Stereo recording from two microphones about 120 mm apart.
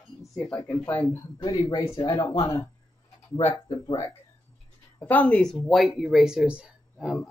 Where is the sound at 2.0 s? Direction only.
30° left (ahead or behind).